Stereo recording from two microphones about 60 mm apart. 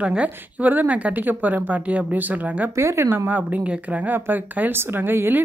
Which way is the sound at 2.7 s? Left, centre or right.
Right.